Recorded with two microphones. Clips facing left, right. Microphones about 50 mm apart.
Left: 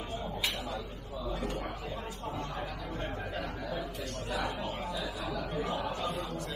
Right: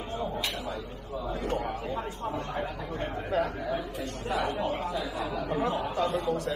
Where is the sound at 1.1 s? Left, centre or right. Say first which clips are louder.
Right 5 dB; right.